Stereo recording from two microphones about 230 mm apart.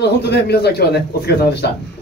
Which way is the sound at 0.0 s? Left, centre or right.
Left.